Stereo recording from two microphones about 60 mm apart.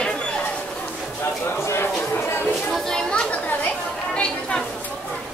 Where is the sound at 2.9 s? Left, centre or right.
Centre.